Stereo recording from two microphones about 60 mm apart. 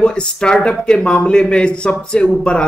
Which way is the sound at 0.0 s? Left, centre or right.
Centre.